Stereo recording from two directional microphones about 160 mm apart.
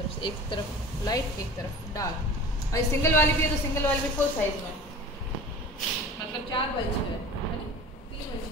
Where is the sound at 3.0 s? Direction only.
15° left (ahead or behind).